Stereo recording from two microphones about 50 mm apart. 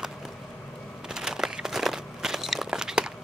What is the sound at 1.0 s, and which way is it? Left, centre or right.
Crumpling, centre.